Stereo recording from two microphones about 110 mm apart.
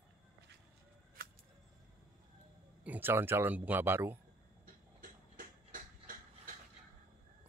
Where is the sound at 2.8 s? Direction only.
15° right (ahead or behind).